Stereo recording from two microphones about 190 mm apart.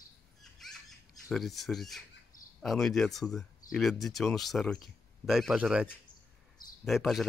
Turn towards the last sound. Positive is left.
turn(degrees=0)  # may be behind; listen again after turning